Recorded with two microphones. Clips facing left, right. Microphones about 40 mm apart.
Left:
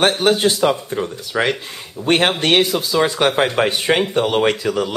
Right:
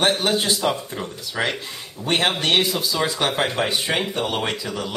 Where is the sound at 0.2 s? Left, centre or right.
Left.